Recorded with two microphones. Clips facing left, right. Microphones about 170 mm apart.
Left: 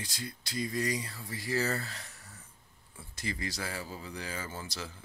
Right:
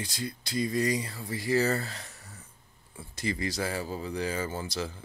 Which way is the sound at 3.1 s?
25° right (ahead or behind).